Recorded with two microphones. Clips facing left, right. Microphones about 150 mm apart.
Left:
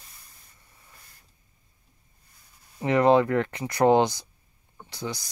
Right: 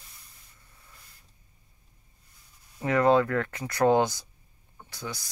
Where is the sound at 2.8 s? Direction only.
20° left (ahead or behind).